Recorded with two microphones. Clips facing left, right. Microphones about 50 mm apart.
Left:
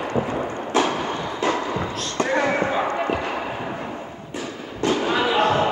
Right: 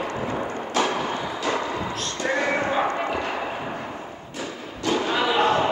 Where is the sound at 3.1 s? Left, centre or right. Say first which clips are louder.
Left 1 dB; centre.